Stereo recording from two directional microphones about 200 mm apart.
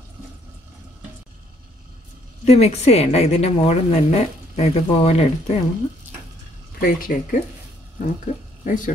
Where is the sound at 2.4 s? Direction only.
30° left (ahead or behind).